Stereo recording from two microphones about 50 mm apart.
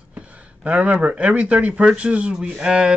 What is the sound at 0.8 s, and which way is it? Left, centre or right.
Speech, right.